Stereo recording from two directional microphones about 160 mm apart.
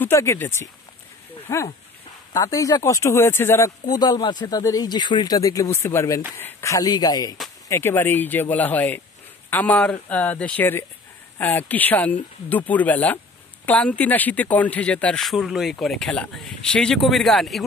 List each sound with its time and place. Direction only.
0.0 s speech: 15° left (ahead or behind)